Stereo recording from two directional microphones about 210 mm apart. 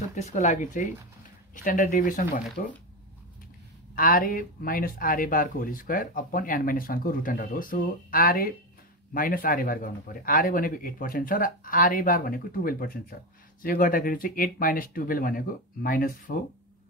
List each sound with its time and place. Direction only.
0.1 s a man's voice: 35° left (ahead or behind)
3.9 s a man's voice: 40° left (ahead or behind)